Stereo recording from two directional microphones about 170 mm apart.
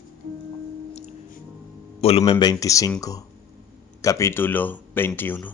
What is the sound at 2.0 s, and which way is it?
A man's voice, 35° left (ahead or behind).